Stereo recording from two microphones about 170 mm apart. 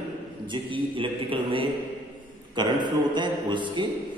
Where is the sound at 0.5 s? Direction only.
30° right (ahead or behind).